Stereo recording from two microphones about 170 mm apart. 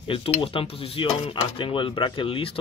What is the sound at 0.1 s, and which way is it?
Dishes, 30° left (ahead or behind).